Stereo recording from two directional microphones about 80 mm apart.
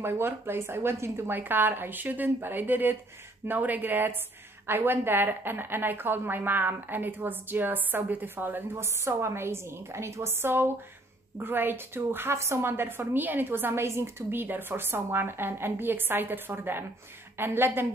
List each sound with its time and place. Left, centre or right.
0.0 s a woman's voice: right